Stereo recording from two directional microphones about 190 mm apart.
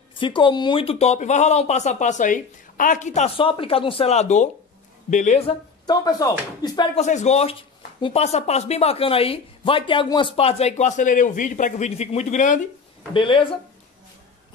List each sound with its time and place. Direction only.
0.1 s speech: 25° left (ahead or behind)
5.9 s speech: 20° left (ahead or behind)
7.0 s speech: 35° left (ahead or behind)
13.1 s speech: 25° left (ahead or behind)